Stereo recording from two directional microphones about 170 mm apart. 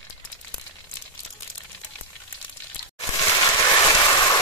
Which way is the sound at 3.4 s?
20° left (ahead or behind).